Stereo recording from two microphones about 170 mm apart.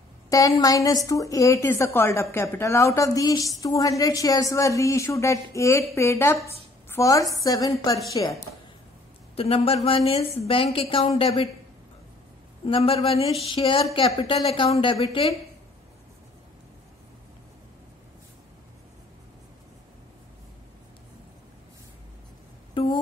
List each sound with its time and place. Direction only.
0.3 s a woman's voice: 20° left (ahead or behind)
9.3 s a man's voice: 35° left (ahead or behind)
12.6 s a woman's voice: 35° left (ahead or behind)
22.8 s music: 30° left (ahead or behind)